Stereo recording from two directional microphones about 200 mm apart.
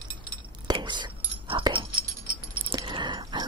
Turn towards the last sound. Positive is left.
turn(degrees=-20)  # may be behind; listen again after turning